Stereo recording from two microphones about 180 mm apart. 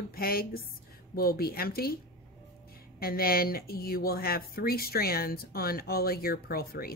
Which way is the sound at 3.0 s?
55° left (ahead or behind).